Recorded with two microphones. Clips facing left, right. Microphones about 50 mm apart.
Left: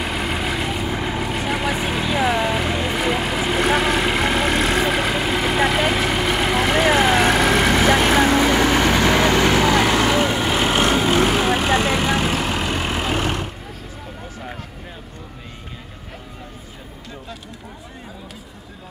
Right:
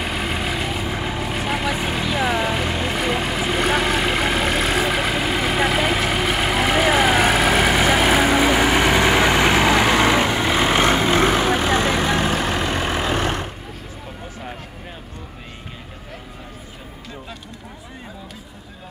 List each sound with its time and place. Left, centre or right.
0.0 s vehicle: centre; by 11.5 s right
11.5 s vehicle: left
12.2 s vehicle: right